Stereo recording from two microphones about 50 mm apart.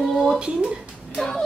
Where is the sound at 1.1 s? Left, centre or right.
Centre.